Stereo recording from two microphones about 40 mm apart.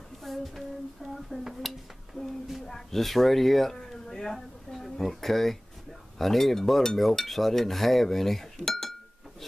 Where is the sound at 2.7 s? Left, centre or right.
Centre.